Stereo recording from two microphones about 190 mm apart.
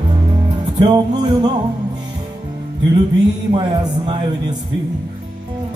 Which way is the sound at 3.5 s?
20° right (ahead or behind).